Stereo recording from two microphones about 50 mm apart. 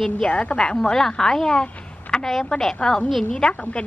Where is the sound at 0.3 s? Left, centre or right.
Left.